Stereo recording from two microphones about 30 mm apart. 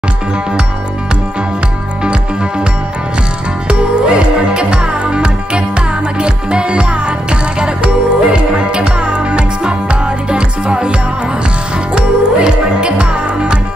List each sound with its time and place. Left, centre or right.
3.6 s music: right